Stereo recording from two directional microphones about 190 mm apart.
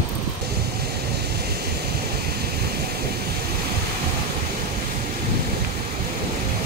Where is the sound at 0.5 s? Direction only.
60° right (ahead or behind).